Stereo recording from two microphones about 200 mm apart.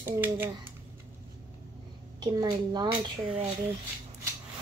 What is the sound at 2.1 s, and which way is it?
Speech, 20° right (ahead or behind).